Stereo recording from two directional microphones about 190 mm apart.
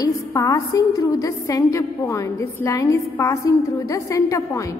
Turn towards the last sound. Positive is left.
turn(degrees=15)  # may be behind; listen again after turning